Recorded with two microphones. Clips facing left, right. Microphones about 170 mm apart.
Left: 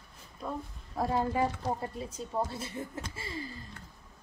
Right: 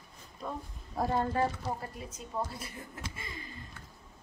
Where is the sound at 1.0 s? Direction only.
Centre (ahead or behind).